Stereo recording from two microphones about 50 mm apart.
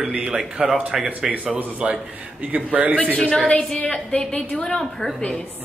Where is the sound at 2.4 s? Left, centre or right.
Right.